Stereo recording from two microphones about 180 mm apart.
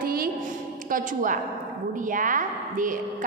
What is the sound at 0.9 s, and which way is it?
A woman's voice, 50° right (ahead or behind).